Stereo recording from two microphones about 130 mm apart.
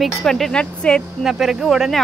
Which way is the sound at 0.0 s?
5° left (ahead or behind).